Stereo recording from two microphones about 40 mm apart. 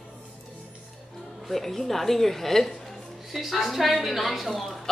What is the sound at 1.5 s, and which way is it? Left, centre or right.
A woman's voice, centre.